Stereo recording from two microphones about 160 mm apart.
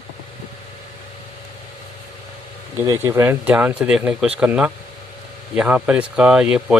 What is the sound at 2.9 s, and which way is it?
Speech, 20° right (ahead or behind).